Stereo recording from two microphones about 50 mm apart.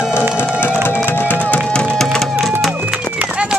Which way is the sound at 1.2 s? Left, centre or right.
Left.